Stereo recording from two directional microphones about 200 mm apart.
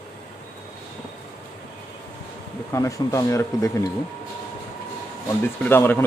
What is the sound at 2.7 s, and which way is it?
Speech, 15° left (ahead or behind).